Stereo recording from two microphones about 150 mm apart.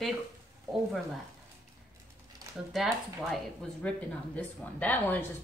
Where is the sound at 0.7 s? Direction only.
25° right (ahead or behind).